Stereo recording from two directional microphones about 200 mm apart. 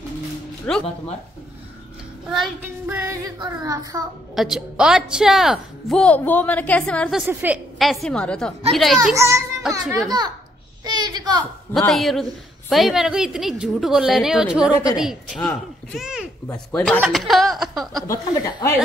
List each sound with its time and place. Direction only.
0.7 s a woman's voice: 5° left (ahead or behind)
2.2 s child singing: centre (ahead or behind)
4.4 s a woman's voice: 5° right (ahead or behind)
9.1 s child singing: 15° right (ahead or behind)
9.8 s a child's voice: 15° right (ahead or behind)
10.8 s a sound: 20° right (ahead or behind)
11.7 s a woman's voice: centre (ahead or behind)
18.0 s speech: 15° left (ahead or behind)